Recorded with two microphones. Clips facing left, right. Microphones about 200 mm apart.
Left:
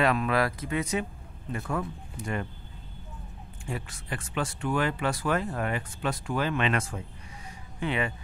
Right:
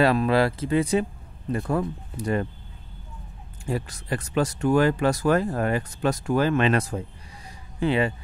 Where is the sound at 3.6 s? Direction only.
40° right (ahead or behind).